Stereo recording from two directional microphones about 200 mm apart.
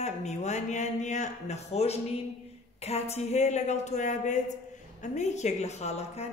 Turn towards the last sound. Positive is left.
turn(degrees=30)  # may be behind; listen again after turning